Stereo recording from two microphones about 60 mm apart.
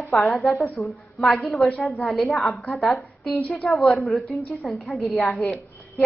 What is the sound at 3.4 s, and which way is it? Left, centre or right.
Speech, left.